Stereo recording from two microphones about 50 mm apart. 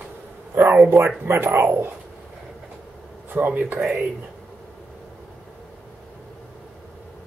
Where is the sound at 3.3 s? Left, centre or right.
Right.